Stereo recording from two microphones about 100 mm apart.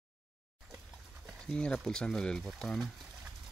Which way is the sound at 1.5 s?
5° left (ahead or behind).